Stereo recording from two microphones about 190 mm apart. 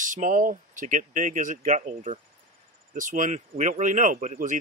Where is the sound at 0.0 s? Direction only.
45° right (ahead or behind).